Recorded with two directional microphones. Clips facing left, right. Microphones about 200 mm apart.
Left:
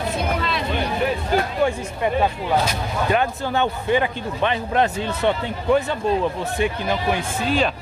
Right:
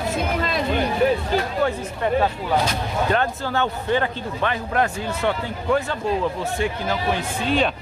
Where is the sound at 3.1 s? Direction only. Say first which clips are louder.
Left 3 dB; 15° left (ahead or behind).